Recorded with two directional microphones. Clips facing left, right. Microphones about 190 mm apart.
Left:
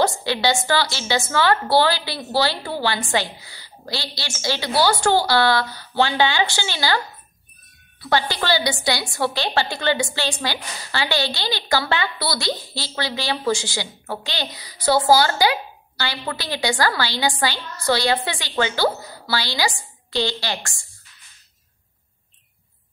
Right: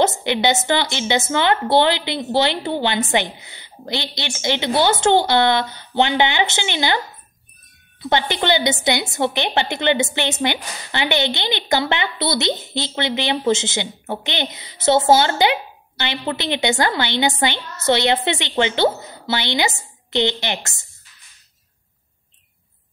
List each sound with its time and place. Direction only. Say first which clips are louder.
0.0 s a woman's voice: right 2 dB; 20° right (ahead or behind)
8.0 s a woman's voice: right 2 dB; 20° right (ahead or behind)